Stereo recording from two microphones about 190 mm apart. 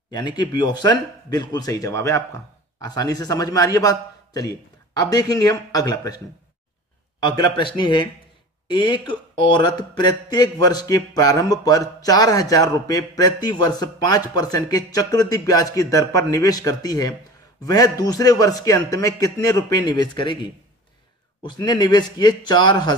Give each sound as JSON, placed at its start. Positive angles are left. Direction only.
{"t": 0.4, "sound": "speech", "side_deg": 20}
{"t": 21.4, "sound": "speech", "side_deg": 25}